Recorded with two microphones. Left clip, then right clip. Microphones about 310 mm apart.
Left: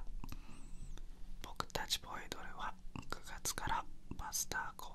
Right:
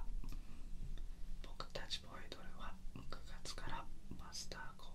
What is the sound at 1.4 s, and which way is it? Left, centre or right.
Whispering, left.